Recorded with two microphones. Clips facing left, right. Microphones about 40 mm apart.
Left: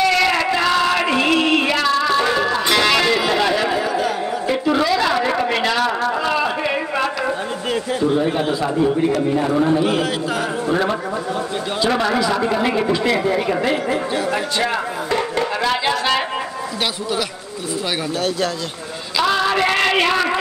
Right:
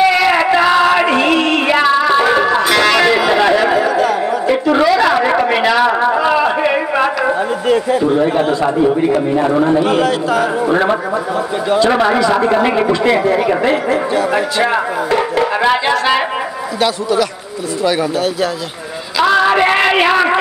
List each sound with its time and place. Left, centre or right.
0.0 s a sound: centre
1.7 s music: right
2.6 s music: centre
4.7 s a sound: centre
7.6 s a man's voice: centre
8.6 s a man's voice: centre
16.8 s a man's voice: centre
19.1 s music: centre